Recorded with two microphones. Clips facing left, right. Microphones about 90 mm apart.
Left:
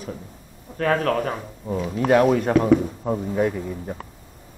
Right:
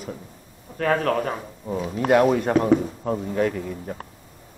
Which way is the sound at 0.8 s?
25° right (ahead or behind).